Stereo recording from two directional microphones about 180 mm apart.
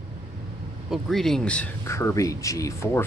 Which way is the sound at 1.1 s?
Centre (ahead or behind).